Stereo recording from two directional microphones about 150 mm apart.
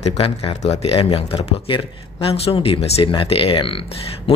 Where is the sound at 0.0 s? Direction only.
40° left (ahead or behind).